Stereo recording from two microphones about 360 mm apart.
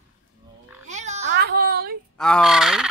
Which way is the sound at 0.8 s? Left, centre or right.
Centre.